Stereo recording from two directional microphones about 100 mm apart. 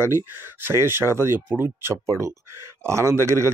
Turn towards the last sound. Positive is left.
turn(degrees=-25)  # may be behind; listen again after turning